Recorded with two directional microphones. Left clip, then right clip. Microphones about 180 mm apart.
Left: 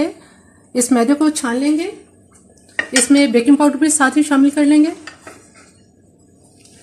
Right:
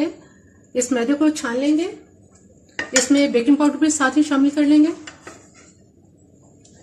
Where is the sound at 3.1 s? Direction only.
50° left (ahead or behind).